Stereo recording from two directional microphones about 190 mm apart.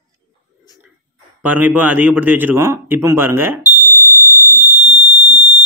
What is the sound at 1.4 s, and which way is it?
Speech, 10° right (ahead or behind).